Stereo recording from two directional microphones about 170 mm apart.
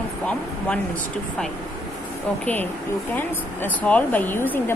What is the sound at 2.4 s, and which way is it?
Speech, 10° left (ahead or behind).